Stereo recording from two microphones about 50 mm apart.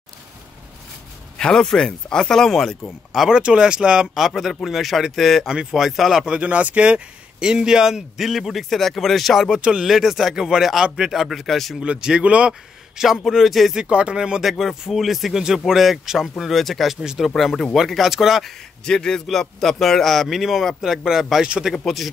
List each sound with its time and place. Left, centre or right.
1.4 s speech: centre
3.1 s a man's voice: centre
4.3 s a man's voice: centre
6.4 s a man's voice: right; by 9.5 s centre
9.5 s a man's voice: centre
11.1 s a man's voice: centre
11.8 s a man's voice: centre
13.7 s a man's voice: right
14.5 s a man's voice: centre
16.9 s a man's voice: centre
18.9 s a man's voice: centre
21.7 s a man's voice: centre